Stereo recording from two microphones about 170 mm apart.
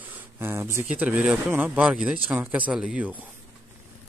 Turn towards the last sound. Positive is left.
turn(degrees=-5)  # may be behind; listen again after turning